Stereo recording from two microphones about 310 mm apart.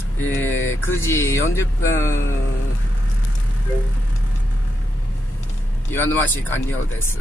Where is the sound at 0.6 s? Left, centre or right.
Left.